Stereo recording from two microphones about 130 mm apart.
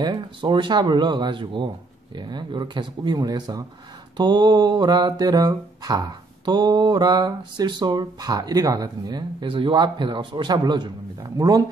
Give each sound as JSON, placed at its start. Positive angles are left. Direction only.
{"t": 0.0, "sound": "mantra", "side_deg": -35}
{"t": 11.3, "sound": "speech", "side_deg": -30}